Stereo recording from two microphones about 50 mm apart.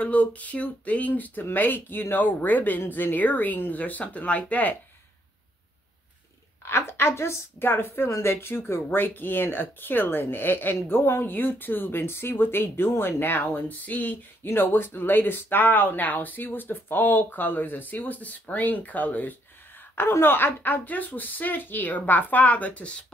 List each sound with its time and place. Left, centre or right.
0.0 s speech: left
6.6 s speech: left
11.3 s speech: left
20.1 s speech: left